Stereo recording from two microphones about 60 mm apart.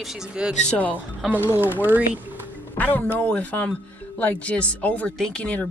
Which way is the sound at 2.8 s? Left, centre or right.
Left.